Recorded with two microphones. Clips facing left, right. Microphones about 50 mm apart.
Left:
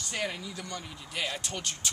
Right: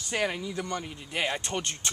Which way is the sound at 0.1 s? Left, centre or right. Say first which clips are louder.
Right 6 dB; centre.